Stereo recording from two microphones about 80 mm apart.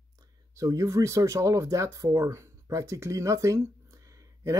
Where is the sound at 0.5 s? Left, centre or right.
Right.